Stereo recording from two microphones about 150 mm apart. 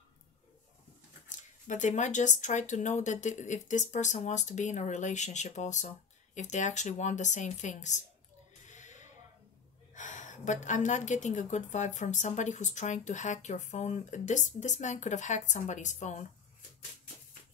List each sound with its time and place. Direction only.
1.7 s a woman's voice: 55° left (ahead or behind)
8.6 s a sound: 55° left (ahead or behind)
9.9 s a woman's voice: 55° left (ahead or behind)